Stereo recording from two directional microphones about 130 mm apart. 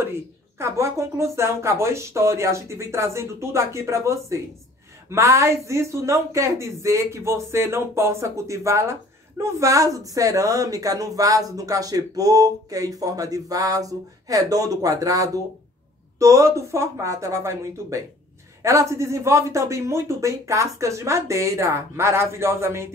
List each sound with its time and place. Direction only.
0.0 s speech: 20° right (ahead or behind)